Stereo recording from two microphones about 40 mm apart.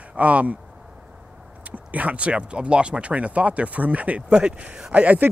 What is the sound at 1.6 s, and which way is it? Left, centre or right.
Speech, right.